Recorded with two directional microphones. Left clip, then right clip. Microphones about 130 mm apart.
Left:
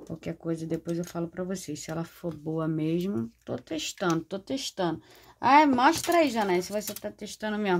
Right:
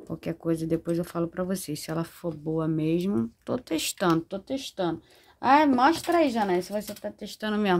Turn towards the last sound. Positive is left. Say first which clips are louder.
# right 2 dB
turn(degrees=-35)  # may be behind; listen again after turning